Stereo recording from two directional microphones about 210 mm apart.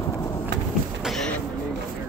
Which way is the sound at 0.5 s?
55° right (ahead or behind).